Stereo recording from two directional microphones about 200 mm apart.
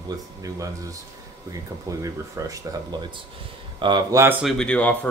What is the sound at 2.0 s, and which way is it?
Speech, 15° right (ahead or behind).